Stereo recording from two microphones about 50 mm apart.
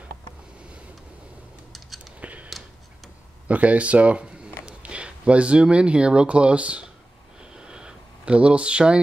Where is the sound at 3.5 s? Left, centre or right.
Right.